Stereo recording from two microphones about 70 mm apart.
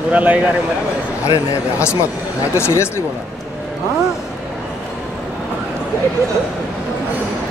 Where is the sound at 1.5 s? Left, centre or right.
Left.